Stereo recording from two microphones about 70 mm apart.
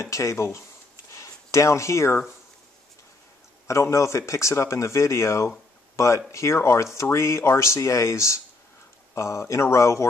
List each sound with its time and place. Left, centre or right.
0.0 s speech: left
1.1 s a sound: left
3.6 s speech: left